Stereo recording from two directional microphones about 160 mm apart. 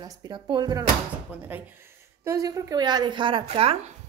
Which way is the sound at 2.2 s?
20° right (ahead or behind).